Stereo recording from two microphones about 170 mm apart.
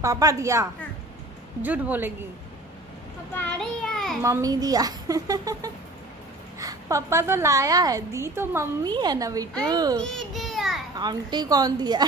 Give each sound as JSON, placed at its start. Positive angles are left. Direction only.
{"t": 0.0, "sound": "a woman's voice", "side_deg": -20}
{"t": 3.3, "sound": "child singing", "side_deg": 5}
{"t": 4.2, "sound": "a woman's voice", "side_deg": -20}
{"t": 9.9, "sound": "a sound", "side_deg": 0}
{"t": 11.0, "sound": "a woman's voice", "side_deg": -25}